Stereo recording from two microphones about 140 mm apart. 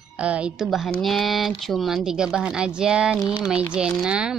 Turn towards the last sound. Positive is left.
turn(degrees=-5)  # may be behind; listen again after turning